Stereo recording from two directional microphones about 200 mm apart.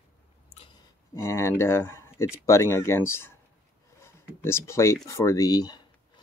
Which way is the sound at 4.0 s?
10° left (ahead or behind).